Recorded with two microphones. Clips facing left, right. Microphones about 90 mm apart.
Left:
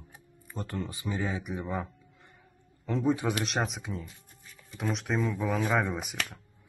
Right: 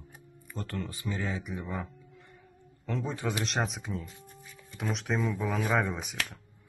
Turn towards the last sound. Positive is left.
turn(degrees=5)  # may be behind; listen again after turning